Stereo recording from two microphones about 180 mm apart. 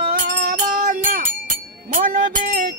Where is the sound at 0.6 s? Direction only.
50° right (ahead or behind).